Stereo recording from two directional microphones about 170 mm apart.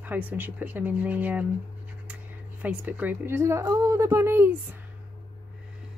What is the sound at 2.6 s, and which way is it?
Speech, 10° right (ahead or behind).